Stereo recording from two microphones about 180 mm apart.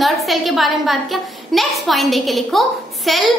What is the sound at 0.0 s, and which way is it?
A woman's voice, centre (ahead or behind).